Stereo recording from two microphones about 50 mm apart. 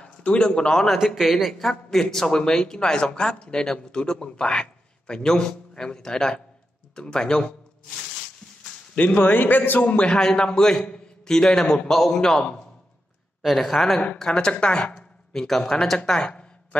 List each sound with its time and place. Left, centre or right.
0.0 s a man's voice: centre
0.8 s speech: centre
1.3 s a man's voice: centre
8.9 s a man's voice: left
9.8 s a man's voice: left
13.4 s speech: centre
14.1 s speech: centre
15.3 s a man's voice: centre